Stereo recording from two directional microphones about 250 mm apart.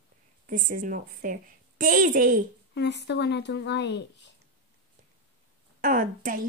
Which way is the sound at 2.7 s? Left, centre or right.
Left.